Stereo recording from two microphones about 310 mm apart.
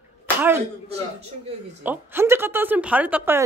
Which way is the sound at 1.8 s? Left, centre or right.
Centre.